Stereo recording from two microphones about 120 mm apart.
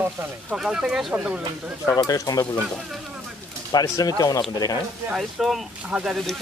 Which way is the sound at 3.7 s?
30° left (ahead or behind).